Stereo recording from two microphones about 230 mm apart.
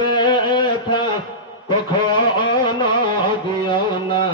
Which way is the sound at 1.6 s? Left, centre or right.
Centre.